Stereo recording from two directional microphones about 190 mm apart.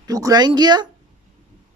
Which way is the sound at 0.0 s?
20° right (ahead or behind).